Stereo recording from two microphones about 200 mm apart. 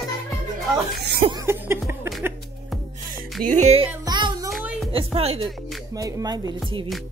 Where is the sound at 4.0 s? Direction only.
20° right (ahead or behind).